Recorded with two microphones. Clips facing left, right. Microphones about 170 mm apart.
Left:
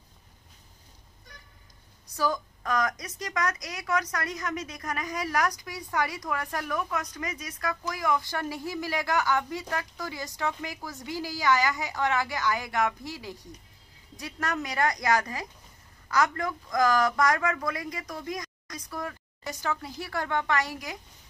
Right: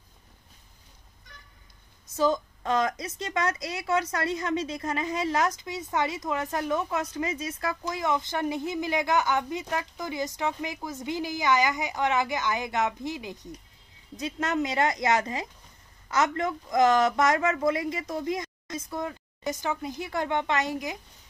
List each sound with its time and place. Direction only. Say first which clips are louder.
2.0 s a woman's voice: right 4 dB; 25° right (ahead or behind)